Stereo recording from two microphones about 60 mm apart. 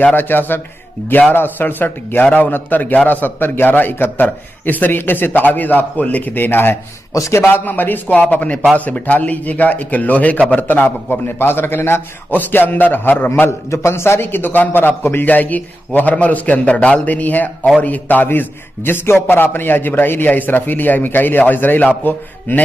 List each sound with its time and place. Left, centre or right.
0.0 s a man's voice: left
7.2 s a man's voice: left
7.4 s a man's voice: left
13.5 s a man's voice: left